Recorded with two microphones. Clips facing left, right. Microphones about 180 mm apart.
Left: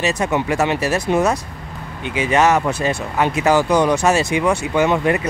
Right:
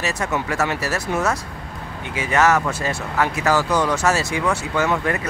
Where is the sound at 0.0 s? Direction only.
20° left (ahead or behind).